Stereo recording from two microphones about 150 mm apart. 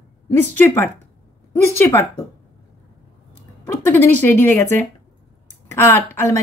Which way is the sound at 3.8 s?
15° left (ahead or behind).